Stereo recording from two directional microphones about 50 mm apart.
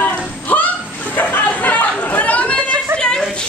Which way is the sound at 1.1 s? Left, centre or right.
Left.